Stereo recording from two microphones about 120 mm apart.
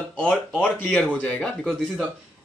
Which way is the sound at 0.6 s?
10° left (ahead or behind).